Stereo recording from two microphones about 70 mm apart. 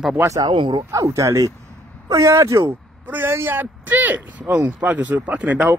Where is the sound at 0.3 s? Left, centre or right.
Right.